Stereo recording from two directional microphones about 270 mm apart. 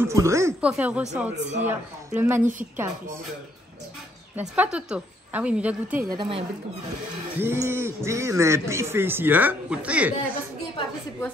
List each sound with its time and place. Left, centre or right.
0.0 s a man's voice: centre
1.4 s speech: right
1.7 s a man's voice: centre
4.4 s a woman's voice: centre
6.1 s speech: centre
7.3 s a man's voice: centre